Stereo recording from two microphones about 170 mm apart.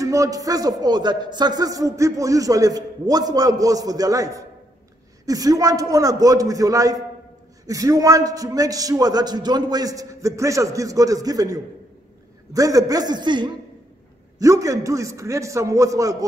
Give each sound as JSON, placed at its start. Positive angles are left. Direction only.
{"t": 0.0, "sound": "a man's voice", "side_deg": -20}